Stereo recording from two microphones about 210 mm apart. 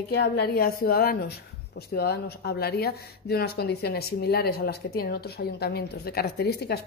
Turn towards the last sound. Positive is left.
turn(degrees=50)  # may be behind; listen again after turning